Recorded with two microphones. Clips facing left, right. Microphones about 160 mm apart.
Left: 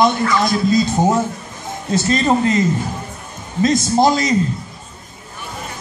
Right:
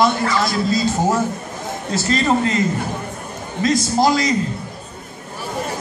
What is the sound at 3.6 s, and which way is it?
Speech, 20° left (ahead or behind).